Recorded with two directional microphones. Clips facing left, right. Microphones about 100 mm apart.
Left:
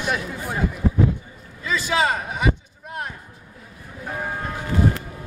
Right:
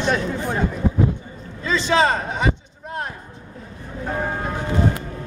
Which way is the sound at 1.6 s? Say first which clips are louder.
Right 4 dB; 10° left (ahead or behind).